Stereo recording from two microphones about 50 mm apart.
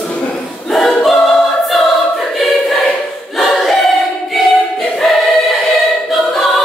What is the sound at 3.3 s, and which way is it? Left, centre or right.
Choir, centre.